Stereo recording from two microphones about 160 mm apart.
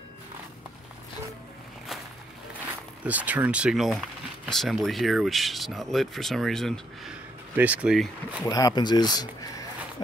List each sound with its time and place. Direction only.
3.0 s speech: 10° right (ahead or behind)
7.5 s speech: 10° right (ahead or behind)
8.5 s speech: 25° left (ahead or behind)